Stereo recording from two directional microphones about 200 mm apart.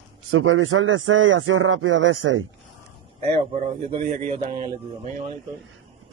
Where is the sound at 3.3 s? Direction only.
30° right (ahead or behind).